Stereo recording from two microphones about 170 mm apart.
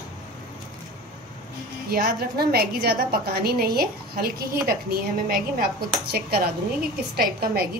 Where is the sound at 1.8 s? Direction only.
65° right (ahead or behind).